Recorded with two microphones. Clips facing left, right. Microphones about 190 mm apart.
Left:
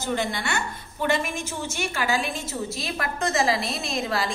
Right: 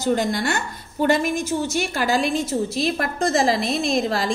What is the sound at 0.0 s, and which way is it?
A woman's voice, 40° right (ahead or behind).